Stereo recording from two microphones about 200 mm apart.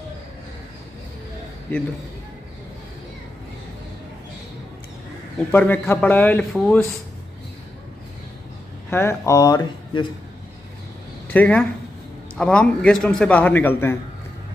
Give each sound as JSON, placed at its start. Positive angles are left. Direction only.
{"t": 1.7, "sound": "a man's voice", "side_deg": 10}
{"t": 5.5, "sound": "a man's voice", "side_deg": 10}
{"t": 8.9, "sound": "a man's voice", "side_deg": 15}
{"t": 11.3, "sound": "a man's voice", "side_deg": 5}